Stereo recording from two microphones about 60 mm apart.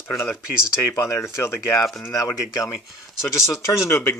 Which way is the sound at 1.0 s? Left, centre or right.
Left.